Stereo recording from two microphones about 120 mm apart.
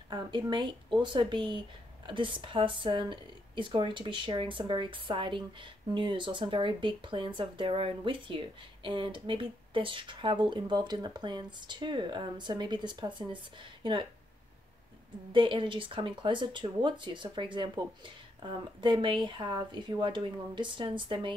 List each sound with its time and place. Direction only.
0.1 s speech: 35° right (ahead or behind)
15.3 s speech: 40° right (ahead or behind)